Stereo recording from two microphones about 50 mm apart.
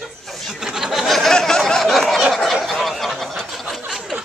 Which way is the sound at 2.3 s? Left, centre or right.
Centre.